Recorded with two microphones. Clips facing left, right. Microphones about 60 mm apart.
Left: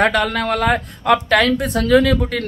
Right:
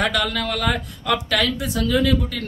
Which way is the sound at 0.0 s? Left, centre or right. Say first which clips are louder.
Left 5 dB; left.